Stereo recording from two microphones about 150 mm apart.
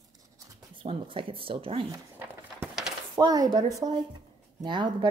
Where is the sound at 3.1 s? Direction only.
25° right (ahead or behind).